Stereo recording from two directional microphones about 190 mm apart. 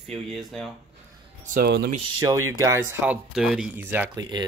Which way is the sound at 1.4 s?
50° right (ahead or behind).